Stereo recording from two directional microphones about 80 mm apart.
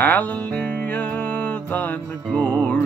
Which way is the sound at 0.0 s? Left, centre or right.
Left.